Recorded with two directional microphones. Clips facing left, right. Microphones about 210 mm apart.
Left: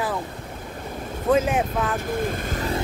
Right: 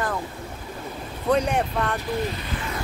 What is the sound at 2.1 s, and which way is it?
Speech, 50° left (ahead or behind).